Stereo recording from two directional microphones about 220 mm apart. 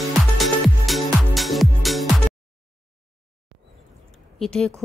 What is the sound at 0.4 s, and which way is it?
Music, centre (ahead or behind).